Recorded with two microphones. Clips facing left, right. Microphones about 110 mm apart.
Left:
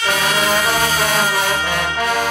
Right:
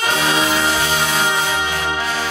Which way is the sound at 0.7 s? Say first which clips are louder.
Left 1 dB; 55° left (ahead or behind).